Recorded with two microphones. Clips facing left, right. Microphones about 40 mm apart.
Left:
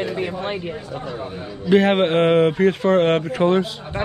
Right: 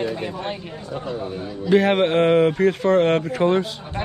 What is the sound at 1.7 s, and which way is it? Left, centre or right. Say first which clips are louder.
Speech: left 1 dB; left.